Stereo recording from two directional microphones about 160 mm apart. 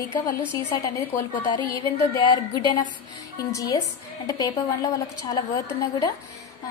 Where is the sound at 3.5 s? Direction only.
25° left (ahead or behind).